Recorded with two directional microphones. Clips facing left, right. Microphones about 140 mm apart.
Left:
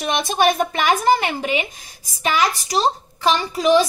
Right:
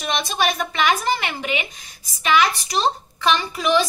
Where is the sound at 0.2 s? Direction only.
50° left (ahead or behind).